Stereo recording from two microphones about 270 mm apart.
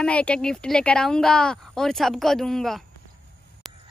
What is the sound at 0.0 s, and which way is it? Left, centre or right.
A woman's voice, centre.